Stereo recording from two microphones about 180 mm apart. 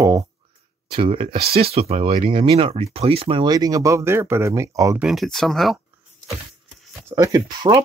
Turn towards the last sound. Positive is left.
turn(degrees=-20)  # may be behind; listen again after turning